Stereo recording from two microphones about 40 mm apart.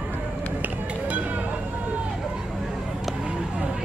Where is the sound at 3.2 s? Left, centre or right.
Right.